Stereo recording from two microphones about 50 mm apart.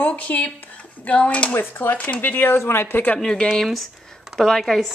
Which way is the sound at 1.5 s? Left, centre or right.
Left.